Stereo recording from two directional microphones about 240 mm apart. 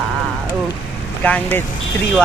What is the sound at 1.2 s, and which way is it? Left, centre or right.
Speech, centre.